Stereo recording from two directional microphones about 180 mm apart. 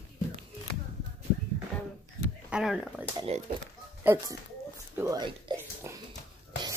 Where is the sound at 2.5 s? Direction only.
5° right (ahead or behind).